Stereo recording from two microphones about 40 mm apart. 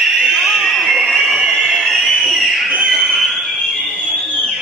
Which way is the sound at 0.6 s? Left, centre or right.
Centre.